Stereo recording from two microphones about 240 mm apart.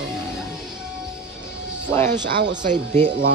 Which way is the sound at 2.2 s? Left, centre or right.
Right.